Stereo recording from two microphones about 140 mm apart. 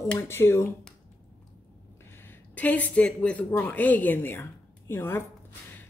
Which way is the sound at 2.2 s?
10° left (ahead or behind).